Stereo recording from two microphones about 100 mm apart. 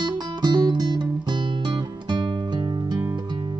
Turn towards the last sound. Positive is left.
turn(degrees=-45)  # may be behind; listen again after turning